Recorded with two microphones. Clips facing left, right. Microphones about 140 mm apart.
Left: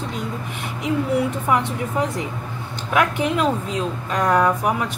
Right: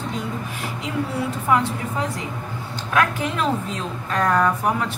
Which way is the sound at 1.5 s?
20° left (ahead or behind).